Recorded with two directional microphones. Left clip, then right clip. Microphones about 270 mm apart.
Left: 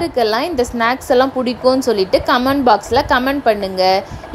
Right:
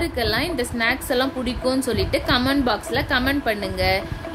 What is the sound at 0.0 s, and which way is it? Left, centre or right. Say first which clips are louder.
A woman's voice: left 7 dB; centre.